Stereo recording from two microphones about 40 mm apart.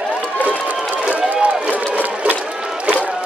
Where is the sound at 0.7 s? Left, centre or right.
Right.